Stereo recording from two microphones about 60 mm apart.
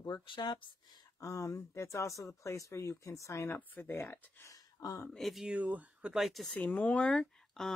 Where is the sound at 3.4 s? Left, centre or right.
Left.